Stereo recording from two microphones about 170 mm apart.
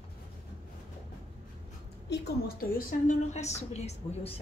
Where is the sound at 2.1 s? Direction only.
65° left (ahead or behind); by 4.3 s 40° left (ahead or behind).